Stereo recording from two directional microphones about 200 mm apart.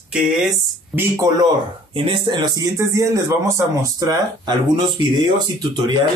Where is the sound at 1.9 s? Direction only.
25° right (ahead or behind).